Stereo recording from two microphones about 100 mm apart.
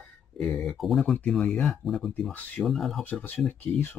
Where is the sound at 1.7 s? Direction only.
Centre (ahead or behind).